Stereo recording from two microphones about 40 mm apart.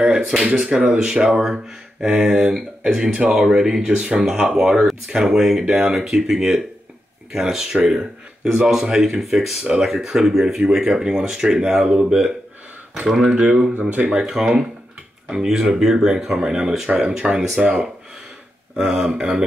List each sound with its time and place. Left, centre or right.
0.0 s speech: centre
2.0 s speech: right
2.3 s speech: centre
9.2 s speech: centre
9.6 s speech: right
12.9 s speech: centre
13.7 s speech: right
14.1 s speech: centre
18.8 s speech: right